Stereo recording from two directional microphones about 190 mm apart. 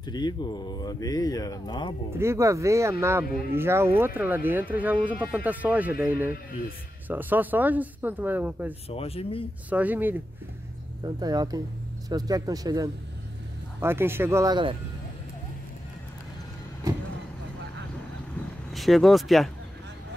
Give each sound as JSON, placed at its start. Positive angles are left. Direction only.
{"t": 0.0, "sound": "speech", "side_deg": 20}
{"t": 2.1, "sound": "speech", "side_deg": -15}
{"t": 8.8, "sound": "speech", "side_deg": 30}
{"t": 9.7, "sound": "speech", "side_deg": -10}
{"t": 11.1, "sound": "speech", "side_deg": -20}
{"t": 16.9, "sound": "speech", "side_deg": -20}
{"t": 18.7, "sound": "speech", "side_deg": 0}